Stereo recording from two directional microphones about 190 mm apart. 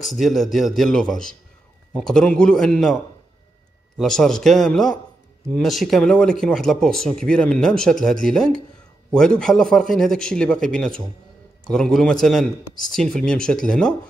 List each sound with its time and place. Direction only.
0.0 s speech: centre (ahead or behind)
4.0 s speech: centre (ahead or behind)